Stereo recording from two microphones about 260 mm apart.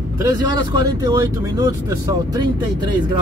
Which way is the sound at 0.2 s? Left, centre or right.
Centre.